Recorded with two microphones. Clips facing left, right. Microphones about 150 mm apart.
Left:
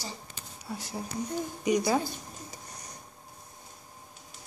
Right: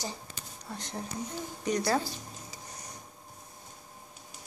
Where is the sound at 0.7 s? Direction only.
5° left (ahead or behind).